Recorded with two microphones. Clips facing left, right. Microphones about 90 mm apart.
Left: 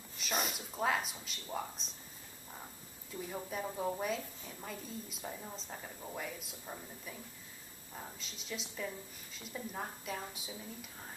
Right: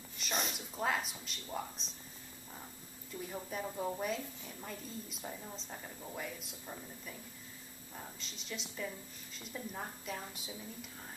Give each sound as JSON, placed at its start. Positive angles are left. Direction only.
{"t": 0.2, "sound": "a woman's voice", "side_deg": 0}
{"t": 3.2, "sound": "a woman's voice", "side_deg": 0}